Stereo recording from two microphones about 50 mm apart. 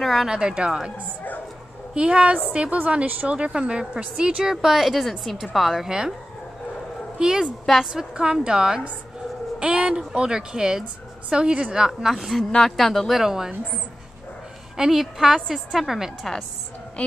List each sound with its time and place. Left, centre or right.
0.0 s speech: centre
0.3 s a woman's voice: centre
2.0 s speech: right
4.4 s a woman's voice: centre
7.2 s a woman's voice: centre
12.1 s speech: centre
13.2 s a woman's voice: centre
14.8 s a woman's voice: centre